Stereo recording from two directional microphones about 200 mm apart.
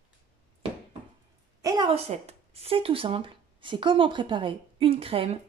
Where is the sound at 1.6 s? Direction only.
20° right (ahead or behind).